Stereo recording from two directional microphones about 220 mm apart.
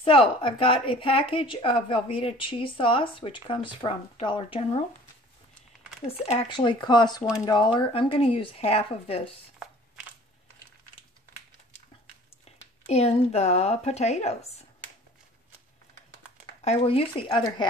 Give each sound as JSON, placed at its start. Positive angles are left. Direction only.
{"t": 0.0, "sound": "a woman's voice", "side_deg": 25}
{"t": 6.0, "sound": "a woman's voice", "side_deg": 25}
{"t": 12.8, "sound": "a woman's voice", "side_deg": 30}
{"t": 16.6, "sound": "a woman's voice", "side_deg": 25}